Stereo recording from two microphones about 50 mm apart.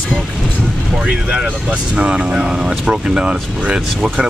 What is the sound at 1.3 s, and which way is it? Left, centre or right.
Speech, centre.